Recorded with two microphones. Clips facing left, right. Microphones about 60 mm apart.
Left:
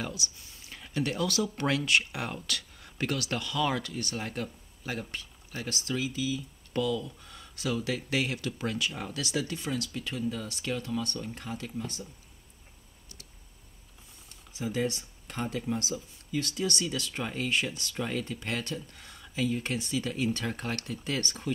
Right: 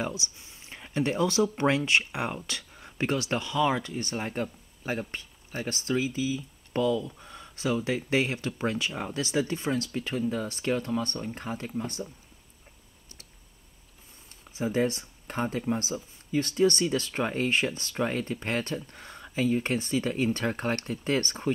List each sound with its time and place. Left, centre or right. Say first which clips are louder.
0.0 s speech: right 4 dB; right
14.5 s speech: right 4 dB; right